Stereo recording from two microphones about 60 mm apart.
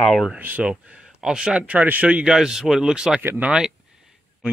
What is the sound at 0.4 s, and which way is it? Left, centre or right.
Speech, right.